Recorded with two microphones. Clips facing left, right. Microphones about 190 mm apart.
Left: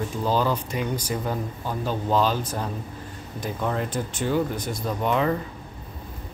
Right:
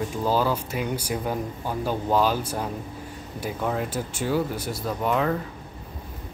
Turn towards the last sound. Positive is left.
turn(degrees=0)  # may be behind; listen again after turning